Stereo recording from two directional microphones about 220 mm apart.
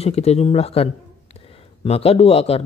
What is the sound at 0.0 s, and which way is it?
Speech, 30° left (ahead or behind).